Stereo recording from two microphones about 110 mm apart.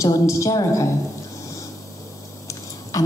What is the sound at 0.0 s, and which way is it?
Speech, 30° left (ahead or behind).